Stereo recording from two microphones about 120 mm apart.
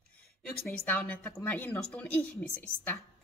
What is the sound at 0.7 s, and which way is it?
Speech, 10° left (ahead or behind).